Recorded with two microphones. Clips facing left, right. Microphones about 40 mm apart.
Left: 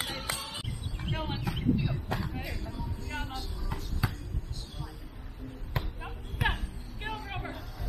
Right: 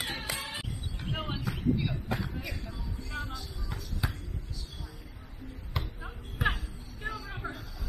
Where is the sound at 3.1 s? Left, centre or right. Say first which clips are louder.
Even; left.